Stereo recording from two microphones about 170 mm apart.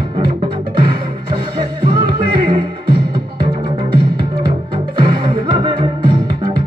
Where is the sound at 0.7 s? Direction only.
30° right (ahead or behind).